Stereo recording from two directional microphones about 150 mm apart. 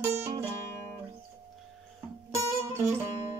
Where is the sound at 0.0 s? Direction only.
20° right (ahead or behind).